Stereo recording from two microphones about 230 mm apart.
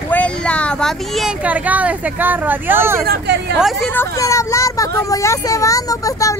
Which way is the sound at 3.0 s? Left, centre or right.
Right.